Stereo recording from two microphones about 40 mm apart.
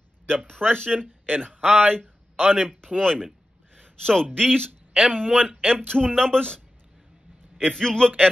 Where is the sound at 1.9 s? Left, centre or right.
Centre.